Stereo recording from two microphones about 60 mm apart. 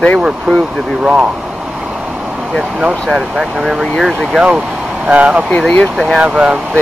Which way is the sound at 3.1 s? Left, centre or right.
Centre.